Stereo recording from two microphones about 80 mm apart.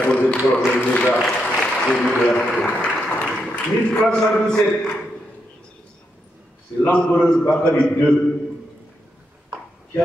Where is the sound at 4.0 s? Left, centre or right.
Centre.